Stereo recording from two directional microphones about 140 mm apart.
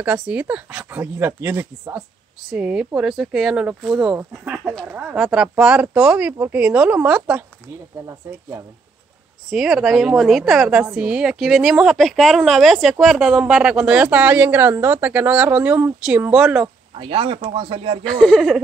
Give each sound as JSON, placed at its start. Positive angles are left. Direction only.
{"t": 0.0, "sound": "a woman's voice", "side_deg": -10}
{"t": 8.1, "sound": "speech", "side_deg": -20}
{"t": 9.5, "sound": "a woman's voice", "side_deg": -5}
{"t": 16.9, "sound": "speech", "side_deg": -40}
{"t": 18.0, "sound": "a woman's voice", "side_deg": 5}